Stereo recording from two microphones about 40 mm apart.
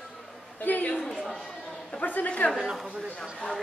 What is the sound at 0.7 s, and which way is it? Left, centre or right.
Speech, left.